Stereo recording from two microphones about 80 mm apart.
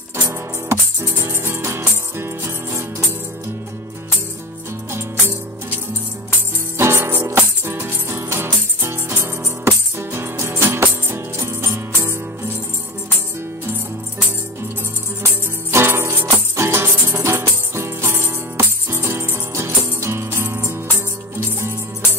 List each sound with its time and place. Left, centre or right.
0.3 s music: right
6.8 s music: right
15.7 s music: right